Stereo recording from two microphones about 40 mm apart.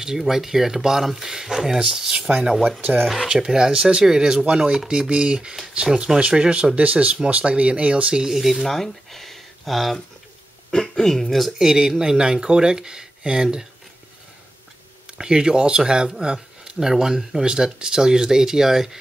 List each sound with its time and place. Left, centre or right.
0.0 s speech: centre
2.0 s speech: right
2.8 s speech: right
3.3 s speech: centre
8.2 s speech: centre
8.6 s speech: centre
11.5 s speech: centre
15.0 s speech: right
17.7 s speech: centre